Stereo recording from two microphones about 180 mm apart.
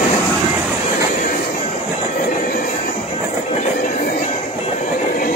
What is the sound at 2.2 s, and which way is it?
Train, 50° left (ahead or behind).